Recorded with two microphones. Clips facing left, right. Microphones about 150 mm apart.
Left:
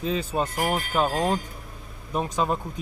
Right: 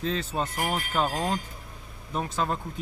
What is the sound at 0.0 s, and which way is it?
A man's voice, 10° left (ahead or behind).